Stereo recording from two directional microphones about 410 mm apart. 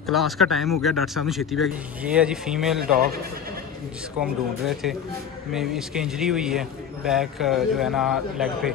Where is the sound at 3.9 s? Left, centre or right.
Centre.